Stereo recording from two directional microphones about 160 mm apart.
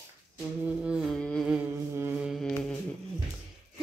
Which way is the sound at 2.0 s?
10° right (ahead or behind).